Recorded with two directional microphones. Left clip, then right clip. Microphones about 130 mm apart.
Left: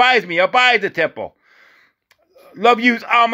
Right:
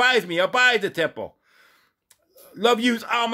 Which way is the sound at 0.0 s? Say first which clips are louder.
Left 6 dB; 20° left (ahead or behind).